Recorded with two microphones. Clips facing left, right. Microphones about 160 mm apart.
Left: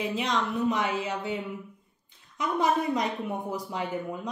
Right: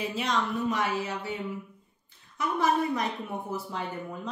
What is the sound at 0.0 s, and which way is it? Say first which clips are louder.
A woman's voice: left 1 dB; 20° left (ahead or behind).